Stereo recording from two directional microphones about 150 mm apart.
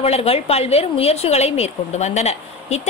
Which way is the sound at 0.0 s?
40° left (ahead or behind).